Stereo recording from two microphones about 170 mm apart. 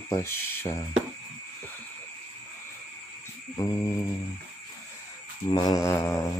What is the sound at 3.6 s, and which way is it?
Speech, 20° left (ahead or behind).